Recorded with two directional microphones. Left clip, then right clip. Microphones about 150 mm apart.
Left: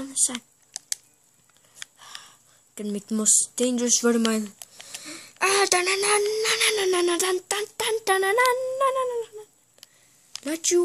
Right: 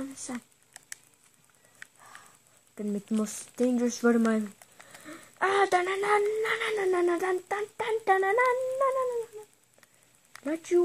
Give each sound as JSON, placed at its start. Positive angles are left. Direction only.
{"t": 0.0, "sound": "computer keyboard", "side_deg": 35}
{"t": 2.7, "sound": "speech", "side_deg": 30}
{"t": 3.5, "sound": "speech", "side_deg": 35}
{"t": 4.8, "sound": "a sound", "side_deg": 30}
{"t": 10.4, "sound": "speech", "side_deg": 30}